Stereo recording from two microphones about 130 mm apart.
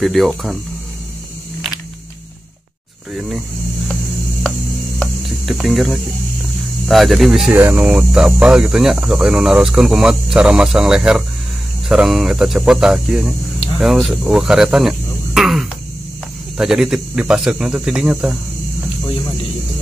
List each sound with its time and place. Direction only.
0.0 s speech: centre (ahead or behind)
3.2 s vehicle: 5° right (ahead or behind)
4.9 s a sound: centre (ahead or behind)
6.9 s speech: centre (ahead or behind)
7.5 s speech: 15° right (ahead or behind)